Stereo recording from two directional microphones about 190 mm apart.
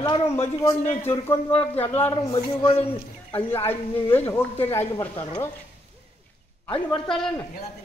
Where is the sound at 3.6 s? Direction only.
10° left (ahead or behind).